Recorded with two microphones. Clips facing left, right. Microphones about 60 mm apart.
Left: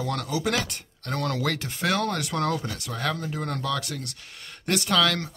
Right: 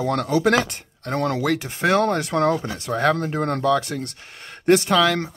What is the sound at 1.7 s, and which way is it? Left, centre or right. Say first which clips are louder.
Speech: right 8 dB; right.